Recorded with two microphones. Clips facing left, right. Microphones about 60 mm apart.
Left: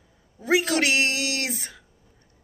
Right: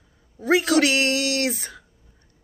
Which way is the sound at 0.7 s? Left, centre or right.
Left.